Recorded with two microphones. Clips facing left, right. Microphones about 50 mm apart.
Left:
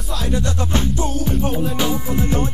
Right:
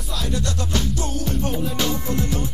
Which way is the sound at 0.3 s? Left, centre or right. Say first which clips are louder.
Left 4 dB; left.